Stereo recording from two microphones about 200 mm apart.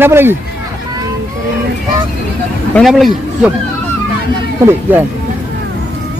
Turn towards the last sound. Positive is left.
turn(degrees=-10)  # may be behind; listen again after turning